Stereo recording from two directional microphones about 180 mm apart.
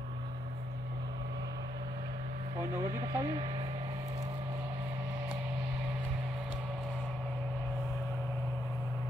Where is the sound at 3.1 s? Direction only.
25° right (ahead or behind).